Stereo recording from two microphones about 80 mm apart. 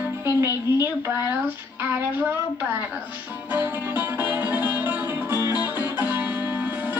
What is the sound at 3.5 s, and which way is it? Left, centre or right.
Music, right.